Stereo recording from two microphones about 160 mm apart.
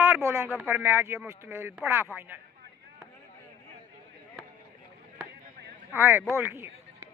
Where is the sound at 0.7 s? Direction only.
15° right (ahead or behind).